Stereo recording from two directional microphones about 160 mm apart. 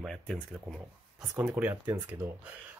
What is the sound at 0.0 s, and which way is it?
Speech, 5° left (ahead or behind).